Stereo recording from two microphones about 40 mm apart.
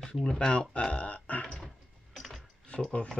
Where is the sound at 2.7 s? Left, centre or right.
Left.